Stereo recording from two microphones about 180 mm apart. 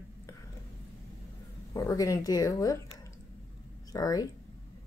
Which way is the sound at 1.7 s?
20° left (ahead or behind).